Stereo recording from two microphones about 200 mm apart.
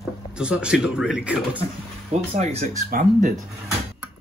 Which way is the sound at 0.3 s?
5° right (ahead or behind).